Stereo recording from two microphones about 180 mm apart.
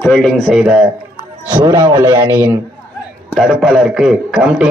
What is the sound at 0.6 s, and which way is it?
Speech, 5° right (ahead or behind).